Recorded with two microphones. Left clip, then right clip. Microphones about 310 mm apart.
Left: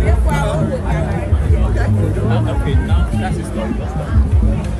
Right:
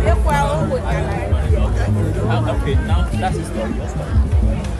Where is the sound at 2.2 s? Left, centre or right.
Right.